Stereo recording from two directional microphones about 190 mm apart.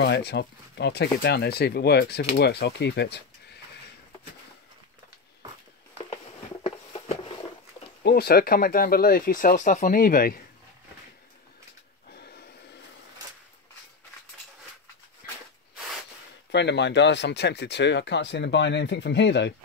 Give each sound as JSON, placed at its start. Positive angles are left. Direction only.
{"t": 0.0, "sound": "speech", "side_deg": 60}
{"t": 6.6, "sound": "a sound", "side_deg": 30}
{"t": 8.0, "sound": "speech", "side_deg": 55}
{"t": 12.1, "sound": "snort", "side_deg": 55}
{"t": 15.2, "sound": "a sound", "side_deg": 50}
{"t": 16.5, "sound": "speech", "side_deg": 65}